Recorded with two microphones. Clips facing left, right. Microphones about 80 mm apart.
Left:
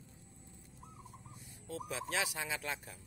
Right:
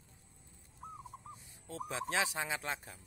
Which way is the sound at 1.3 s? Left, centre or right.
Right.